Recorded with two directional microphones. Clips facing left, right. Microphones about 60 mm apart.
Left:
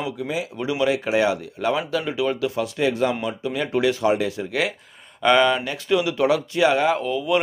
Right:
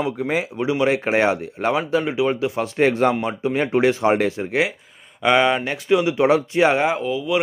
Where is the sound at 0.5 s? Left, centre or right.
Right.